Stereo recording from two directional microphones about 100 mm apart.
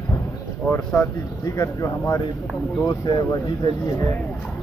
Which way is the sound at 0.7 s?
20° left (ahead or behind).